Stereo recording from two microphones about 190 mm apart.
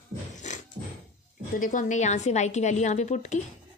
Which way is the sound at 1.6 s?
45° left (ahead or behind).